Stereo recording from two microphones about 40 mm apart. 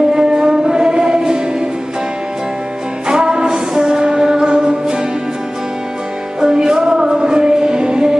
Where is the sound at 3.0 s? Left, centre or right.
Centre.